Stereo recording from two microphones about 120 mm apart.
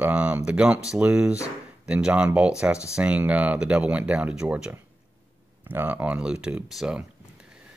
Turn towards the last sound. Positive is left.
turn(degrees=-5)  # may be behind; listen again after turning